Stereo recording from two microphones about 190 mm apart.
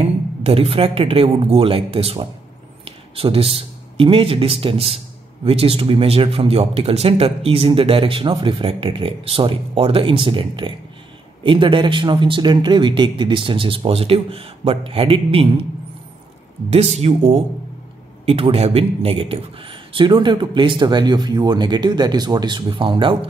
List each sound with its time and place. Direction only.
0.0 s speech: 30° right (ahead or behind)
16.7 s speech: 35° right (ahead or behind)